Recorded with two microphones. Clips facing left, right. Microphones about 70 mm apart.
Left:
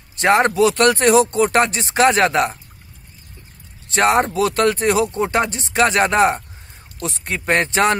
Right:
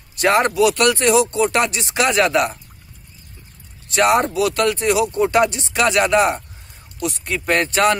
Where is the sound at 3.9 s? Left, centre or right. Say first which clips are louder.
Even; left.